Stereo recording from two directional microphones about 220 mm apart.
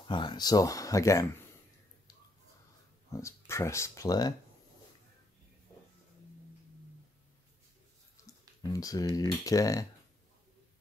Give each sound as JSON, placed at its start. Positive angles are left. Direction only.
{"t": 0.1, "sound": "speech", "side_deg": 20}
{"t": 3.1, "sound": "speech", "side_deg": 15}
{"t": 8.2, "sound": "typing", "side_deg": 15}
{"t": 9.1, "sound": "speech", "side_deg": 15}